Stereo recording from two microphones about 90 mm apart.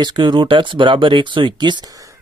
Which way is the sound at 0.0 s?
55° right (ahead or behind).